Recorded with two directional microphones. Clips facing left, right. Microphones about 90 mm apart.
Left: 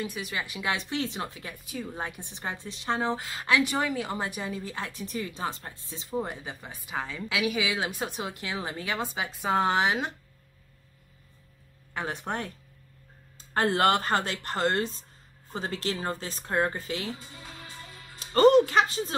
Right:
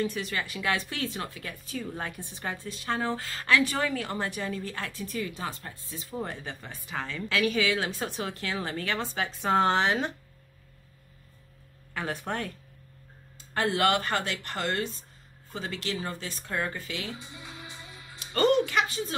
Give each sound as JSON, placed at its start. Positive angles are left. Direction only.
{"t": 0.0, "sound": "speech", "side_deg": 10}
{"t": 11.9, "sound": "speech", "side_deg": 20}
{"t": 13.5, "sound": "speech", "side_deg": 35}
{"t": 17.3, "sound": "speech", "side_deg": -10}
{"t": 18.2, "sound": "music", "side_deg": 35}